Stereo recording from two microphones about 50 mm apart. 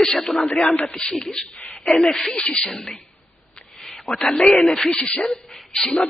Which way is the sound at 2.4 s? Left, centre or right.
Centre.